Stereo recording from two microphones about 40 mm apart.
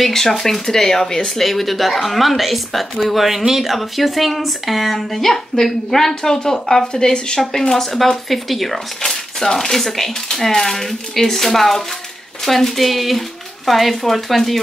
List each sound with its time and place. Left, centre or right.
0.0 s speech: centre